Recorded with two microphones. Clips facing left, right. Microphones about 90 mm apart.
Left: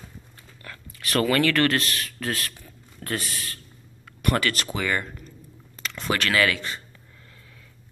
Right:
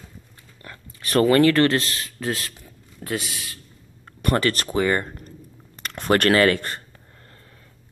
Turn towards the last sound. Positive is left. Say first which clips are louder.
# right 5 dB
turn(degrees=-45)  # may be behind; listen again after turning